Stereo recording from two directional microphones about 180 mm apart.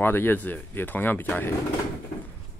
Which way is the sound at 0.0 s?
10° left (ahead or behind).